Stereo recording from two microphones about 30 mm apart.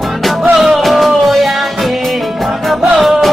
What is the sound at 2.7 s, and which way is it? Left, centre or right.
Music, centre.